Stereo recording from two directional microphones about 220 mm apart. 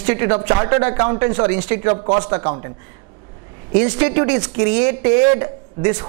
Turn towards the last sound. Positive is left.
turn(degrees=-20)  # may be behind; listen again after turning